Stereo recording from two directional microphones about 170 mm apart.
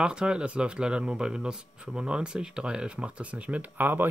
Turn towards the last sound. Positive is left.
turn(degrees=-10)  # may be behind; listen again after turning